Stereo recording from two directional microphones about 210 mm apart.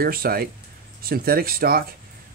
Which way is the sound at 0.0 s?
45° right (ahead or behind).